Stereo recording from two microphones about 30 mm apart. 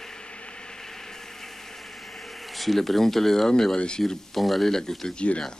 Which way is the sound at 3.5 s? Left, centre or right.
Left.